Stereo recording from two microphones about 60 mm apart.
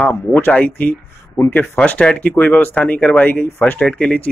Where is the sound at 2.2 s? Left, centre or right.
Left.